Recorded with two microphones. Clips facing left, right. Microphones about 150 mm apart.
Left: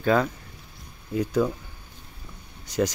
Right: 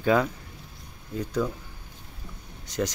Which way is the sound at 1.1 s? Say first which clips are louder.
Left 6 dB; 10° left (ahead or behind).